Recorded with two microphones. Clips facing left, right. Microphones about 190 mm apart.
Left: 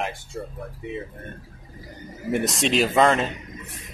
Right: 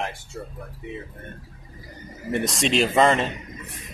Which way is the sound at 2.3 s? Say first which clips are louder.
Even; centre (ahead or behind).